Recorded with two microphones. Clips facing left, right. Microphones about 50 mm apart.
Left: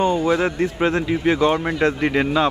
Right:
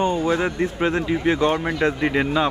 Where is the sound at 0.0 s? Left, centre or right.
Left.